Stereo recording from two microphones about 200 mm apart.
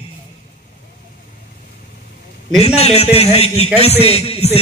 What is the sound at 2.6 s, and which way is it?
A man's voice, 30° left (ahead or behind).